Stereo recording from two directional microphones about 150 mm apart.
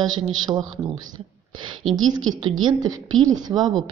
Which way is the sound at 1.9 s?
35° right (ahead or behind).